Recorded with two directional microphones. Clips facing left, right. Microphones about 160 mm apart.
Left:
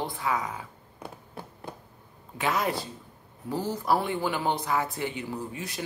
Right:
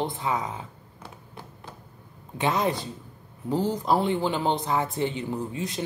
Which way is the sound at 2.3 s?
25° right (ahead or behind).